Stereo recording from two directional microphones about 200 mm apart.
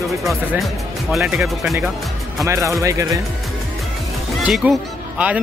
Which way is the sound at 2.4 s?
15° right (ahead or behind).